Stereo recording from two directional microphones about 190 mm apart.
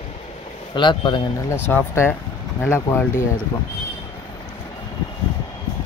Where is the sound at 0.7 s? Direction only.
25° left (ahead or behind).